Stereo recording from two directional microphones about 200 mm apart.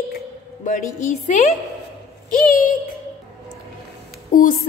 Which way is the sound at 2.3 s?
45° left (ahead or behind).